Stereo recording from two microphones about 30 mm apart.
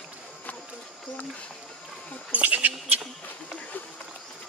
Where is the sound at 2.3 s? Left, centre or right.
Right.